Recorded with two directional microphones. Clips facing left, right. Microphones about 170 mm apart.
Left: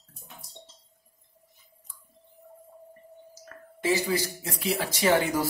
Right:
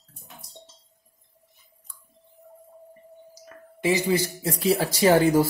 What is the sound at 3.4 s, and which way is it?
Speech, 15° right (ahead or behind).